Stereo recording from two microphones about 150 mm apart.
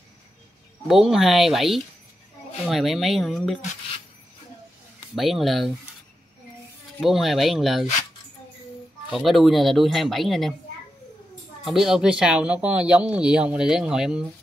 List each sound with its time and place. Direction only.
0.8 s speech: 5° right (ahead or behind)
5.1 s speech: centre (ahead or behind)
7.0 s speech: centre (ahead or behind)
9.1 s speech: centre (ahead or behind)
11.6 s speech: centre (ahead or behind)